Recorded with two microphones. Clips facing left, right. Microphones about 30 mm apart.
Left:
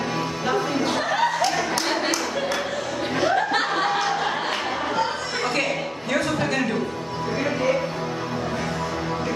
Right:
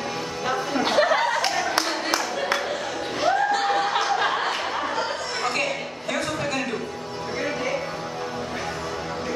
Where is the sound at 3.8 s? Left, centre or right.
Centre.